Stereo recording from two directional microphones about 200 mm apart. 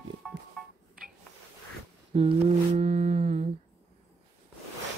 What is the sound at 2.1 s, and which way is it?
Humming, 30° right (ahead or behind).